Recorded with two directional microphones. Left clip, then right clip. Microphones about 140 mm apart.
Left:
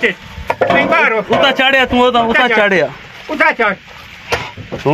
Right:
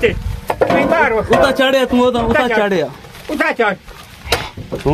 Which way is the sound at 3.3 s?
60° right (ahead or behind).